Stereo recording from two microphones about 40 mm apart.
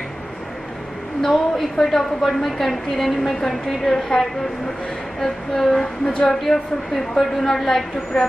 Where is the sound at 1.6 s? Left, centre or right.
Centre.